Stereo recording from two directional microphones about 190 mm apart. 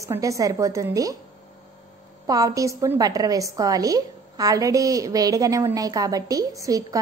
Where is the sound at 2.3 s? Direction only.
15° right (ahead or behind).